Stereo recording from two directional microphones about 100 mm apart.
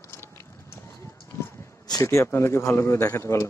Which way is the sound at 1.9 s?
35° left (ahead or behind).